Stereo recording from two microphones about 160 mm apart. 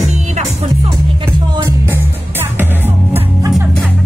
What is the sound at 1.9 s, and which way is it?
Music, 15° right (ahead or behind).